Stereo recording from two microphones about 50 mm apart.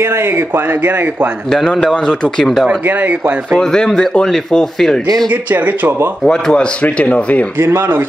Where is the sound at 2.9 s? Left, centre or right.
Right.